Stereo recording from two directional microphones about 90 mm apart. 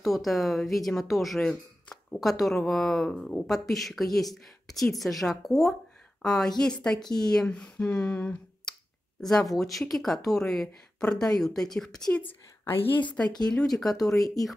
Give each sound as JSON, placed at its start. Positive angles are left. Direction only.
{"t": 0.0, "sound": "a woman's voice", "side_deg": 0}
{"t": 12.6, "sound": "a woman's voice", "side_deg": 25}
{"t": 13.5, "sound": "a woman's voice", "side_deg": 5}